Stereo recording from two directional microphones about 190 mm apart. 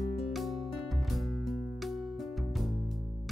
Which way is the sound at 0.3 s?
Centre (ahead or behind).